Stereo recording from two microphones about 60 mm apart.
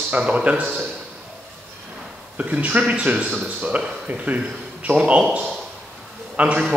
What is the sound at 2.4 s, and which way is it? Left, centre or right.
Speech, right.